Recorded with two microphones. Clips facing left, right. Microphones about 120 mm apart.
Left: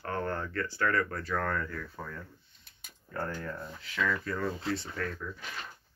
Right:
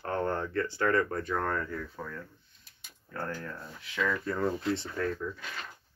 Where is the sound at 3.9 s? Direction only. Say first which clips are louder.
Right 1 dB; 25° right (ahead or behind).